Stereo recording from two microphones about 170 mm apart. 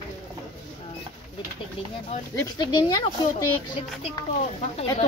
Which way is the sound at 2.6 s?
25° left (ahead or behind).